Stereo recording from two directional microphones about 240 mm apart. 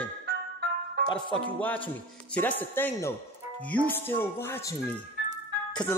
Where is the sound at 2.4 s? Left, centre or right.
Centre.